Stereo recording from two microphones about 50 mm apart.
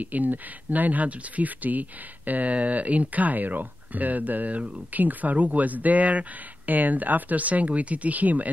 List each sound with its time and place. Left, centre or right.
0.0 s speech: right